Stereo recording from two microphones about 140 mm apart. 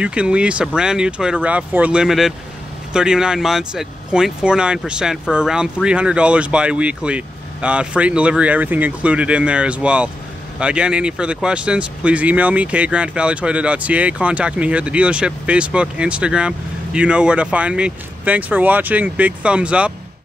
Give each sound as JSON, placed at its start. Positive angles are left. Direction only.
{"t": 0.0, "sound": "speech", "side_deg": -10}